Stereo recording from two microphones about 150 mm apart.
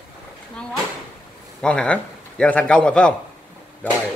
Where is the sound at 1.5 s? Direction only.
5° left (ahead or behind).